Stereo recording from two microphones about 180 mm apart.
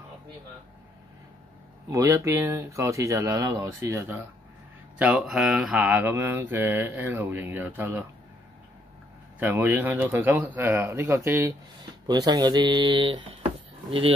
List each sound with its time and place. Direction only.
1.9 s mantra: 15° right (ahead or behind)
4.9 s mantra: 5° right (ahead or behind)
9.4 s mantra: 10° right (ahead or behind)
12.1 s speech: 20° right (ahead or behind)